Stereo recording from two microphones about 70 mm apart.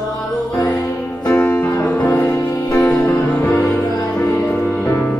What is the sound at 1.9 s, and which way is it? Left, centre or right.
Music, centre.